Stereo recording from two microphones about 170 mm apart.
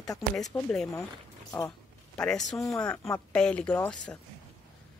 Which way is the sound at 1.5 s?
20° left (ahead or behind).